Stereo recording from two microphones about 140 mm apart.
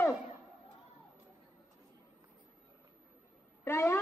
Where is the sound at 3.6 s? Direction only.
15° left (ahead or behind).